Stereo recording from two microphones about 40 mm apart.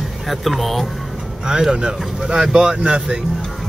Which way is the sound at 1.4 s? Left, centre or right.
Centre.